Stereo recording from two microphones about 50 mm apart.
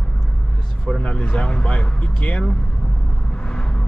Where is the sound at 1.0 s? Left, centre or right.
Left.